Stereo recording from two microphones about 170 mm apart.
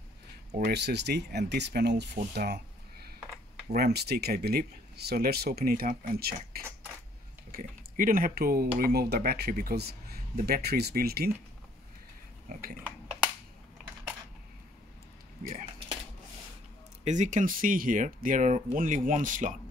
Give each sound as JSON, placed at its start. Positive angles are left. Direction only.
{"t": 0.7, "sound": "speech", "side_deg": -80}
{"t": 3.7, "sound": "speech", "side_deg": -70}
{"t": 12.4, "sound": "speech", "side_deg": -55}
{"t": 17.0, "sound": "speech", "side_deg": -45}